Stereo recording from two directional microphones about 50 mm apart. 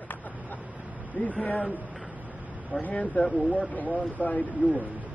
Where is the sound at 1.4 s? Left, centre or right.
Left.